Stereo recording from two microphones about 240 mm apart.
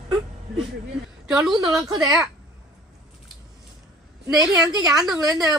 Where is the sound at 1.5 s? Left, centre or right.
Centre.